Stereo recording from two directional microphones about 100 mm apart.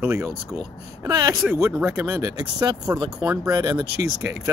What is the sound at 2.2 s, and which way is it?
Speech, 40° right (ahead or behind).